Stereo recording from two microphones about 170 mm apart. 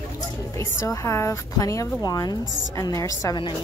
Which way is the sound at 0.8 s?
15° left (ahead or behind).